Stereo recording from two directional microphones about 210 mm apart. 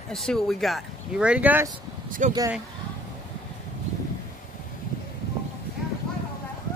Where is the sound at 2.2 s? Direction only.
35° right (ahead or behind).